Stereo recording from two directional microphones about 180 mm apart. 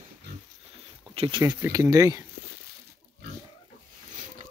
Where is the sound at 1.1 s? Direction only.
25° right (ahead or behind).